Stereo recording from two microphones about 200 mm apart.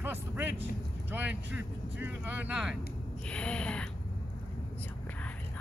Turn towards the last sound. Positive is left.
turn(degrees=5)  # may be behind; listen again after turning